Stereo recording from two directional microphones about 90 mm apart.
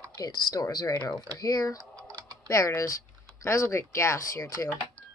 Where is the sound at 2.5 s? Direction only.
35° left (ahead or behind).